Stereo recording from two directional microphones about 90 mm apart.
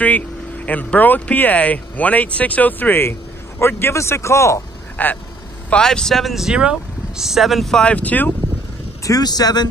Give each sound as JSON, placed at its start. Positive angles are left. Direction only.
{"t": 0.7, "sound": "speech", "side_deg": 15}
{"t": 4.9, "sound": "speech", "side_deg": 20}
{"t": 5.7, "sound": "speech", "side_deg": 10}
{"t": 9.0, "sound": "speech", "side_deg": 45}